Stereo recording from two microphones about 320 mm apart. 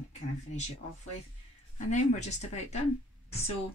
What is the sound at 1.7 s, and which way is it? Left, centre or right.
Speech, left.